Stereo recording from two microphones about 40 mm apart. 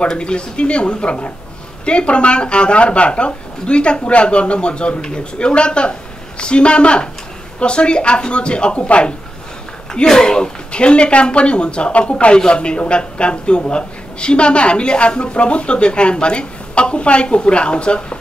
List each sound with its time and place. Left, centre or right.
0.2 s a man's voice: left
8.7 s a man's voice: left
10.0 s a man's voice: centre